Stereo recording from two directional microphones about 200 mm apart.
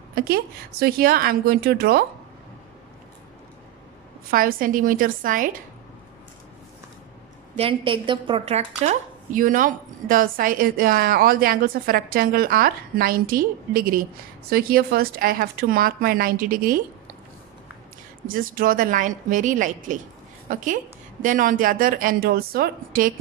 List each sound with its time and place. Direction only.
0.1 s a woman's voice: 50° right (ahead or behind)
4.3 s a woman's voice: 45° right (ahead or behind)
7.5 s a woman's voice: 25° right (ahead or behind); by 16.8 s 45° right (ahead or behind)
18.3 s a woman's voice: 45° right (ahead or behind)